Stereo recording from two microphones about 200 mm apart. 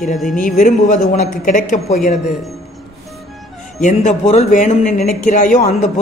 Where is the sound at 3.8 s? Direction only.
40° left (ahead or behind).